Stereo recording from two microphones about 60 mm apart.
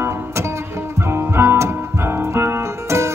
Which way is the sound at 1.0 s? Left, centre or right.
Right.